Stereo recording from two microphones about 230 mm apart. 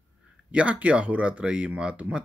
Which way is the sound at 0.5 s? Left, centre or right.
Centre.